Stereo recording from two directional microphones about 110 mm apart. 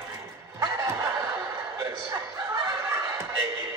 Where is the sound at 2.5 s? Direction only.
30° right (ahead or behind).